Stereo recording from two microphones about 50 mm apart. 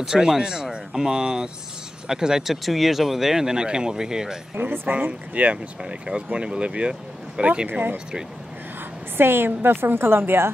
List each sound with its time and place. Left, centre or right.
0.0 s speech: centre
4.6 s speech: right
5.8 s speech: centre
9.1 s a woman's voice: right